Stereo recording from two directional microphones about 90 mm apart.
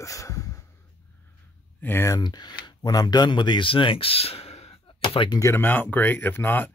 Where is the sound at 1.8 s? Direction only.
30° left (ahead or behind).